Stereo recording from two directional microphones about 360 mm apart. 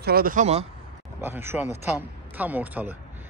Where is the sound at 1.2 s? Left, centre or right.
Centre.